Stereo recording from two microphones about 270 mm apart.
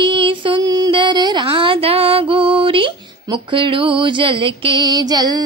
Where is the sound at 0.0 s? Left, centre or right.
Centre.